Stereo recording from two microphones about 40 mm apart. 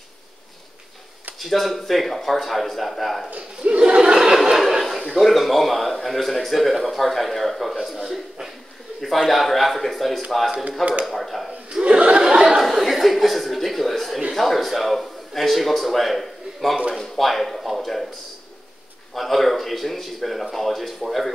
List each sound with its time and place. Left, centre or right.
1.4 s a man's voice: centre
3.3 s chuckle: right
4.5 s a sound: centre
5.1 s a man's voice: centre
11.7 s chuckle: right
12.2 s a sound: centre
14.3 s speech: centre
19.1 s a man's voice: centre